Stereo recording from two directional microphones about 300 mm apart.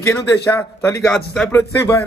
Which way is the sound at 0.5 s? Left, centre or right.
Centre.